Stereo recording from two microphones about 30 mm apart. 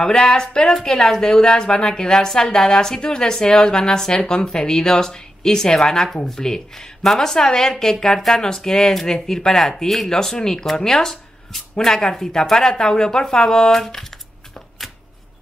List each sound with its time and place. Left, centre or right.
0.0 s a woman's voice: left